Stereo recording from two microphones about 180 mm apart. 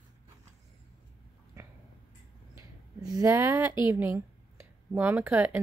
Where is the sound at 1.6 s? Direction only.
15° right (ahead or behind).